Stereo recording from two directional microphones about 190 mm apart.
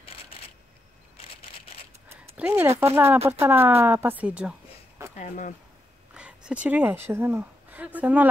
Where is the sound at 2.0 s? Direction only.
10° right (ahead or behind).